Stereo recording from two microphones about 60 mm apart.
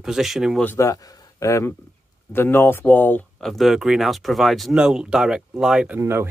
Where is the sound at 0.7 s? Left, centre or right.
Left.